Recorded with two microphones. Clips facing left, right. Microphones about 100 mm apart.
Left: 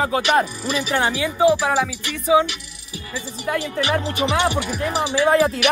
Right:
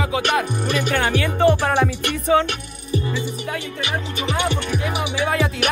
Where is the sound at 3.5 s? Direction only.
55° left (ahead or behind).